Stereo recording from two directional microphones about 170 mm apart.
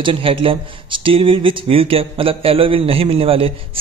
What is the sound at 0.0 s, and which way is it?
Speech, 30° right (ahead or behind).